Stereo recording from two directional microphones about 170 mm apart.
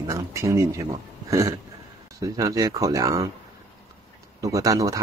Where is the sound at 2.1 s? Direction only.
20° right (ahead or behind).